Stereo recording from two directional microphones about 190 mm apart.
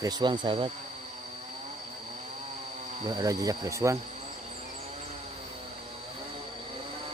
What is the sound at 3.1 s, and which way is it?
Speech, 20° right (ahead or behind).